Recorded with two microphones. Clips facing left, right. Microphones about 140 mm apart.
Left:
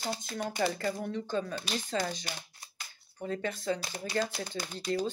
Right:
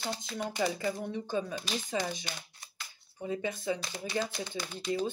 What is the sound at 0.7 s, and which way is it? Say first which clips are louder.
Speech: even; 15° right (ahead or behind).